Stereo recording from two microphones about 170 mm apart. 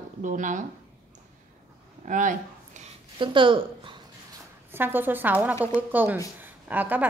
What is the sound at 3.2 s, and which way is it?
Speech, 30° right (ahead or behind).